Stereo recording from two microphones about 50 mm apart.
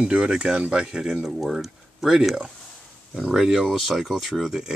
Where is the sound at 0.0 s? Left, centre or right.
Right.